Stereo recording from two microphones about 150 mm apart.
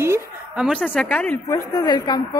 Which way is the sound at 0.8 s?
10° left (ahead or behind).